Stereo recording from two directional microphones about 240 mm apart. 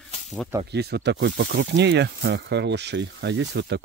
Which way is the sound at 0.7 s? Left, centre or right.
Right.